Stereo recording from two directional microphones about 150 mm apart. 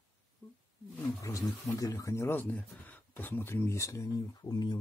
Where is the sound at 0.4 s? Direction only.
30° left (ahead or behind).